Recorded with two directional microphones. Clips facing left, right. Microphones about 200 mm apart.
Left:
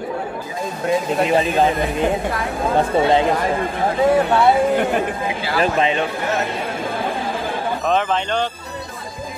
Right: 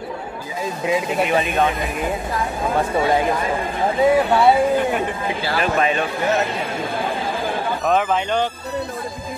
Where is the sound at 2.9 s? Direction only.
20° left (ahead or behind).